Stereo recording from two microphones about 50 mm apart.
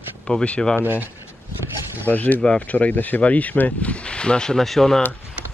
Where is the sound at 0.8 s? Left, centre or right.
Right.